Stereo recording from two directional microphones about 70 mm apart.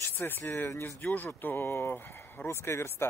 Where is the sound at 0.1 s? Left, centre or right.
Left.